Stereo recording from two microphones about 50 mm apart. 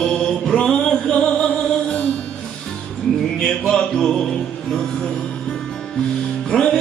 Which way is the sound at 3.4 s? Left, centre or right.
Centre.